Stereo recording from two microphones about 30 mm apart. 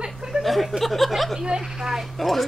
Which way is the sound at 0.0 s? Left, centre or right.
Right.